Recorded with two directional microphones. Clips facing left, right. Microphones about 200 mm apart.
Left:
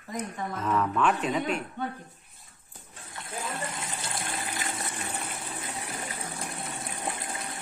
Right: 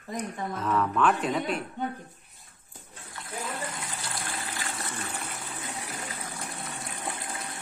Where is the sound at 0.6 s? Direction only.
5° left (ahead or behind).